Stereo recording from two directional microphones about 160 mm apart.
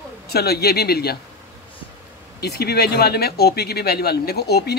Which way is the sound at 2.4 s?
90° left.